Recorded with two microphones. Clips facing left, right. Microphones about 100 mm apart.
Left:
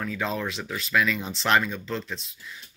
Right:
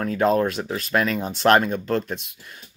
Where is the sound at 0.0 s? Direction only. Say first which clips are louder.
Right 9 dB; 45° right (ahead or behind).